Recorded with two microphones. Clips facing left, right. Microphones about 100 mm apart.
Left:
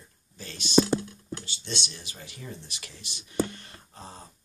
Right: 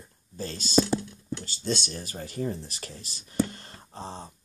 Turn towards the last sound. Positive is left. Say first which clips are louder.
# right 6 dB
turn(degrees=-30)  # may be behind; listen again after turning